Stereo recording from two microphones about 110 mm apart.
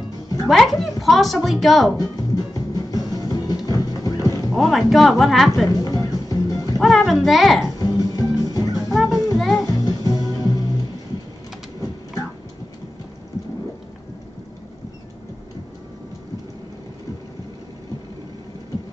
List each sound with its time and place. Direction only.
0.5 s a woman's voice: centre (ahead or behind)
2.0 s music: 35° left (ahead or behind)
4.5 s a woman's voice: centre (ahead or behind)
5.7 s music: 35° left (ahead or behind)
6.8 s a woman's voice: centre (ahead or behind)
7.8 s music: 35° left (ahead or behind)
9.4 s music: centre (ahead or behind)
9.8 s music: 35° left (ahead or behind)